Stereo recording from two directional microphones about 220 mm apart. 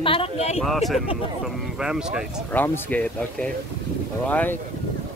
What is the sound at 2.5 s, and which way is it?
Speech, 10° left (ahead or behind).